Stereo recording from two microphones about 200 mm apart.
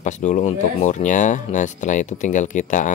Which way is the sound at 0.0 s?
35° left (ahead or behind).